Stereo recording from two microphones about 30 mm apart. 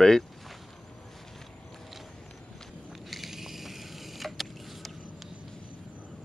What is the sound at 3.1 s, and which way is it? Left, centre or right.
Vehicle, centre.